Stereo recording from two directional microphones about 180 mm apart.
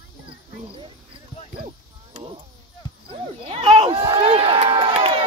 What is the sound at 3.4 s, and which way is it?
Run, 30° right (ahead or behind).